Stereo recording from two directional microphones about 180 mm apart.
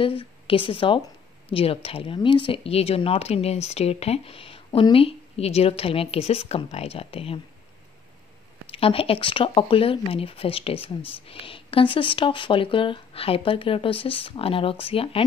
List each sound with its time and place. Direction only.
0.0 s speech: 30° left (ahead or behind)
8.6 s speech: 30° left (ahead or behind)